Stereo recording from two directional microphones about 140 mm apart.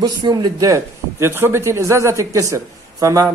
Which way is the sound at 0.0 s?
30° right (ahead or behind).